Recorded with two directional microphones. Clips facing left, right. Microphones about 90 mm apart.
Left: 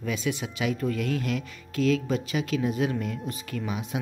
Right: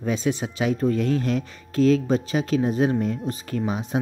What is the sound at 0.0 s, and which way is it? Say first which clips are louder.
Speech: right 5 dB; 35° right (ahead or behind).